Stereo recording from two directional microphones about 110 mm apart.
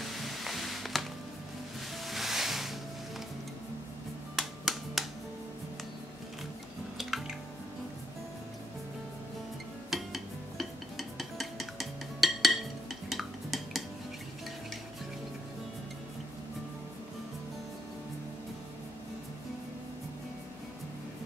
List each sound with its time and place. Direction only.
0.0 s music: centre (ahead or behind)
2.0 s music: centre (ahead or behind)
4.4 s music: centre (ahead or behind)
7.0 s drip: centre (ahead or behind)
9.8 s dishes: centre (ahead or behind)
13.1 s cutlery: centre (ahead or behind)